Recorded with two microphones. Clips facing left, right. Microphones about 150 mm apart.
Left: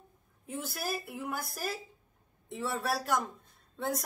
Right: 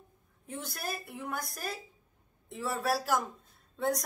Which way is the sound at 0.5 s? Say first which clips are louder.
Left 2 dB; 5° left (ahead or behind).